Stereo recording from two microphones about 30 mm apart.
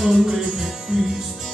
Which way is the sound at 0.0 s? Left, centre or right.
Centre.